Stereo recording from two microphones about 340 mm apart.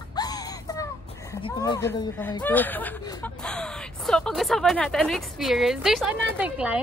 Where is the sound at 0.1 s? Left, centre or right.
Centre.